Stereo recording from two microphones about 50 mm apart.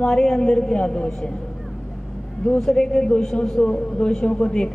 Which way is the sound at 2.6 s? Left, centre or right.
Centre.